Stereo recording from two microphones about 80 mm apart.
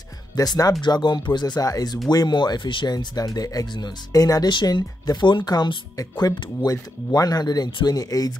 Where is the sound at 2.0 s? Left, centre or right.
Left.